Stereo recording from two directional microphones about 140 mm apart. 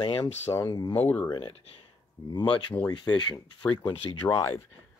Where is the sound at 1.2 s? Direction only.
35° left (ahead or behind).